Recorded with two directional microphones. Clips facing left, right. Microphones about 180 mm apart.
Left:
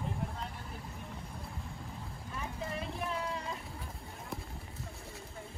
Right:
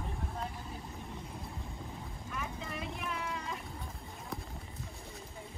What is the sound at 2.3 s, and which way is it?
Boat, 35° left (ahead or behind).